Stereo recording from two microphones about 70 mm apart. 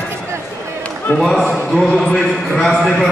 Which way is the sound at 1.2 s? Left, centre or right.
Centre.